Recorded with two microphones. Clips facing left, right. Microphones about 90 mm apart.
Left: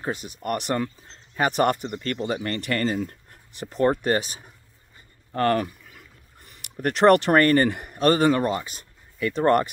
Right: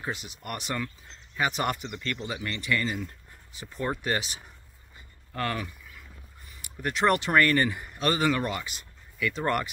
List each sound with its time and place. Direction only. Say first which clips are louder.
0.0 s speech: left 6 dB; 45° left (ahead or behind)